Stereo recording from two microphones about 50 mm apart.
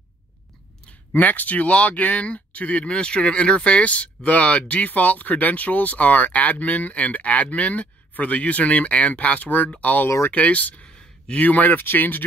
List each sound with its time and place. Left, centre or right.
1.1 s speech: left